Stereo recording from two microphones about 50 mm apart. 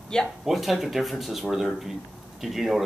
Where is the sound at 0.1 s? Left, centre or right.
Centre.